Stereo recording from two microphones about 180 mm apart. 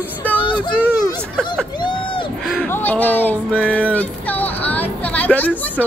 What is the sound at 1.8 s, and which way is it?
Crowd, 25° left (ahead or behind).